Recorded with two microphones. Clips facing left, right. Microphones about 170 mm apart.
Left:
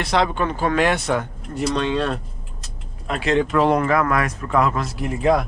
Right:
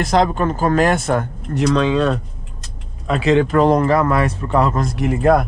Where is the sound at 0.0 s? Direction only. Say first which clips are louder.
Right 4 dB; 45° right (ahead or behind).